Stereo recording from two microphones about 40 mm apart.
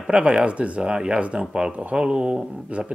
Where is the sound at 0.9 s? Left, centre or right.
Right.